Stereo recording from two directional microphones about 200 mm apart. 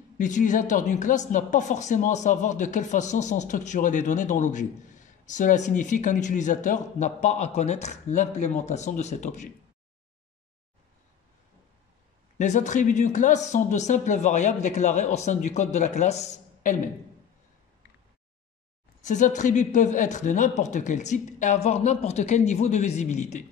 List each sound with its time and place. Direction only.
0.2 s speech: 40° left (ahead or behind)
12.4 s speech: 35° left (ahead or behind)
18.9 s speech: 40° left (ahead or behind)